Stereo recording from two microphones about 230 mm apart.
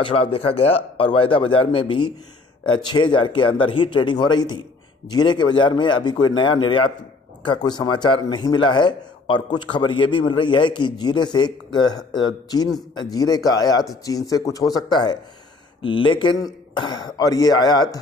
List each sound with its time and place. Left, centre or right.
0.0 s speech: left